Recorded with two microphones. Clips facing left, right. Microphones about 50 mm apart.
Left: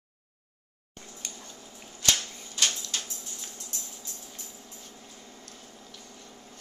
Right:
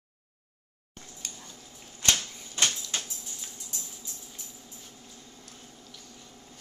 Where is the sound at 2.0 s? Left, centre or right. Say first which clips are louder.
Even; right.